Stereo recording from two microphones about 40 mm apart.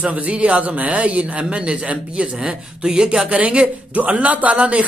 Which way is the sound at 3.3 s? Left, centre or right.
Right.